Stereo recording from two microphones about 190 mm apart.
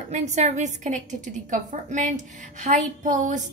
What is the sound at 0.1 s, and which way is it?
A woman's voice, 40° right (ahead or behind).